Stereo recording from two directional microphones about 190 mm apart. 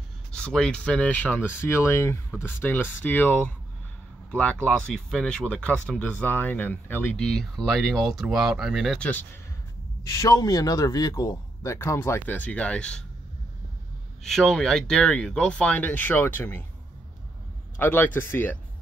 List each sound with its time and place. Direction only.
0.3 s speech: 5° left (ahead or behind)
14.2 s speech: centre (ahead or behind)
17.7 s speech: 10° left (ahead or behind)